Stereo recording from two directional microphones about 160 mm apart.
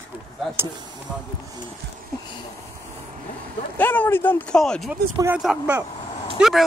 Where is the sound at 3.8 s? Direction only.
10° left (ahead or behind).